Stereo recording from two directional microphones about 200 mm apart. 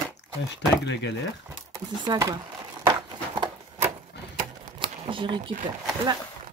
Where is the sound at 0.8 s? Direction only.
60° left (ahead or behind).